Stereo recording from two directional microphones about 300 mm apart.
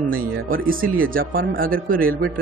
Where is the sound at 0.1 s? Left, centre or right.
Right.